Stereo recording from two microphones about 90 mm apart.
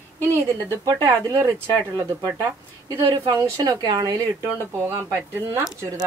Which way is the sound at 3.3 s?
35° right (ahead or behind).